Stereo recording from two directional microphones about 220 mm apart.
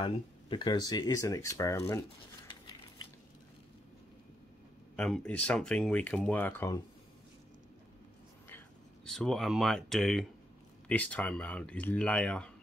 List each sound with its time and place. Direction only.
0.0 s speech: 20° left (ahead or behind)
4.9 s speech: 5° left (ahead or behind)
8.5 s speech: 5° left (ahead or behind)